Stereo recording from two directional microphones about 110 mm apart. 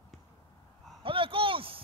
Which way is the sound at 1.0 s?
55° right (ahead or behind).